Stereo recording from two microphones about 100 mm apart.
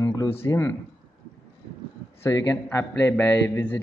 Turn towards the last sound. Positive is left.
turn(degrees=20)  # may be behind; listen again after turning